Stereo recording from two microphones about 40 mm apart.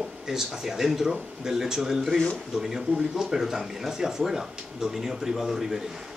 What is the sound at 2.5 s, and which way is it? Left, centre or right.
Speech, centre.